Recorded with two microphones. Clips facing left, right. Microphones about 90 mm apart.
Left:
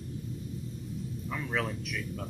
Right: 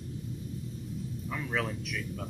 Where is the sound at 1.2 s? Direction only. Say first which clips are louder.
Even; centre (ahead or behind).